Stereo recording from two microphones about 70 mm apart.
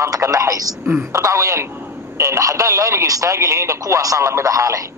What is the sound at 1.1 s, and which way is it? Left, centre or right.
A man's voice, right.